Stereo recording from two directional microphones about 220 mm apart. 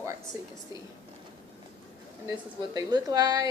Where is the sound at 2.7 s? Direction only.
15° right (ahead or behind).